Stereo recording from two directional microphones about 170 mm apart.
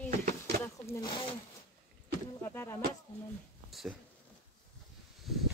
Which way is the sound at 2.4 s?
15° left (ahead or behind).